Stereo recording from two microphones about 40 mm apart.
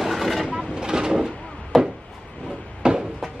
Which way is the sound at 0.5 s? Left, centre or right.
Centre.